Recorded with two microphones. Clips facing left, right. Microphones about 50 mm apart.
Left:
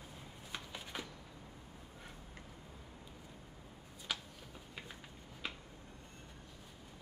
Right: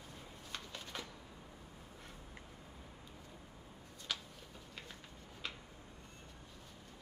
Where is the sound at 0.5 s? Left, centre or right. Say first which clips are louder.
Left 1 dB; centre.